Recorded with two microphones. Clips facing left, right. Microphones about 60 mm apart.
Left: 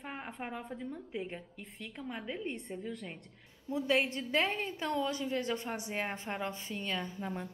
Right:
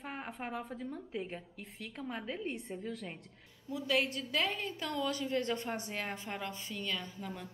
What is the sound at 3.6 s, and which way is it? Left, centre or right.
A woman's voice, left.